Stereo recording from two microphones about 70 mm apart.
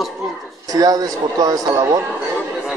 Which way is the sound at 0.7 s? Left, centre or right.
Right.